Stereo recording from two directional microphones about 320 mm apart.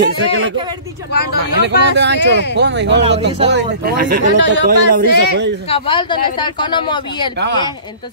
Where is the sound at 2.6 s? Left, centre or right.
Right.